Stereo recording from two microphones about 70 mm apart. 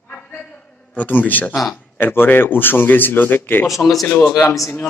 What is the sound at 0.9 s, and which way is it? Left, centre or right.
Speech, left.